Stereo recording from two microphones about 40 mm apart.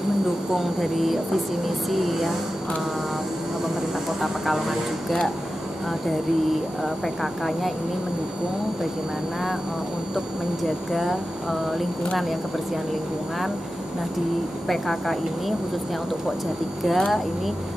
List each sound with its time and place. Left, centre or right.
0.5 s speech: centre
4.2 s speech: centre
10.1 s speech: centre
14.7 s speech: centre
16.8 s speech: centre